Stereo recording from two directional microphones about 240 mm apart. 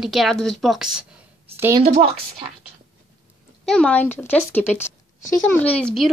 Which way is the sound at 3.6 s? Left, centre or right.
Centre.